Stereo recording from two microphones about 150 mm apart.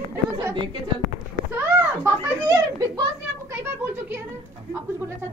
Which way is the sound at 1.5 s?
15° right (ahead or behind).